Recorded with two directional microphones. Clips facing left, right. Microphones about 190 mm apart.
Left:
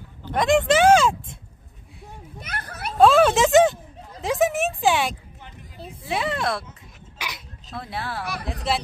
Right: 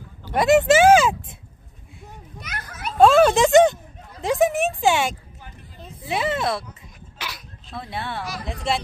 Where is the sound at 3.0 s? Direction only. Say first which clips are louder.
Right 1 dB; centre (ahead or behind).